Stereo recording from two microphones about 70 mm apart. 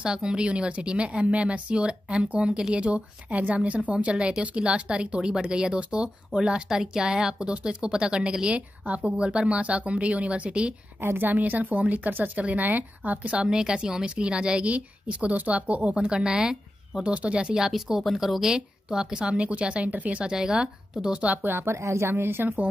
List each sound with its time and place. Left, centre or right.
0.0 s speech: centre
11.0 s speech: right; by 21.4 s centre
21.4 s a woman's voice: right